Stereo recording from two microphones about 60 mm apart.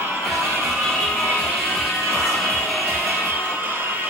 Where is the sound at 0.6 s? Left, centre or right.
Centre.